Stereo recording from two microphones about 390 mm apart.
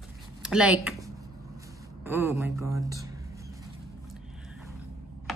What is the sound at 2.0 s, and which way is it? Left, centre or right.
Speech, centre.